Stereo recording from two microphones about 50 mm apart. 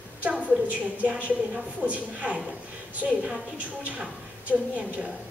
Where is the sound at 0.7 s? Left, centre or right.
Right.